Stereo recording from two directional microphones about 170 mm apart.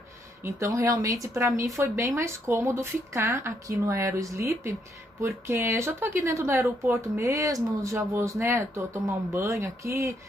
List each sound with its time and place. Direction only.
0.4 s speech: 15° right (ahead or behind)